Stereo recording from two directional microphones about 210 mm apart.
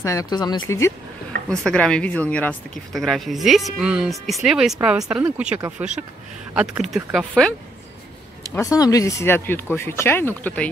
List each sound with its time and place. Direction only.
0.0 s speech: 15° left (ahead or behind)
8.5 s speech: 15° left (ahead or behind)